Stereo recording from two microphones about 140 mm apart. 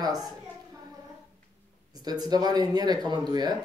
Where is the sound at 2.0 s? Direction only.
30° right (ahead or behind).